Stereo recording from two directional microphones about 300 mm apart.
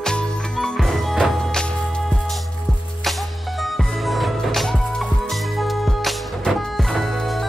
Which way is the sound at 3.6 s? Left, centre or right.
Centre.